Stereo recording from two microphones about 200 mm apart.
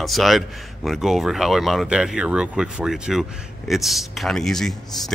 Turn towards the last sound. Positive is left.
turn(degrees=0)  # may be behind; listen again after turning